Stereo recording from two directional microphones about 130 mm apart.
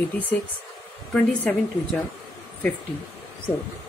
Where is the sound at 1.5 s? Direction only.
10° left (ahead or behind).